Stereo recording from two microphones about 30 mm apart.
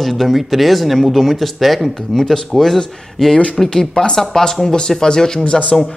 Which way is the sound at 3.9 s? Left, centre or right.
Left.